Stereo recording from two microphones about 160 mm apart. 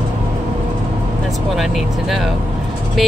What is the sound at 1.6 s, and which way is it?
Speech, centre (ahead or behind).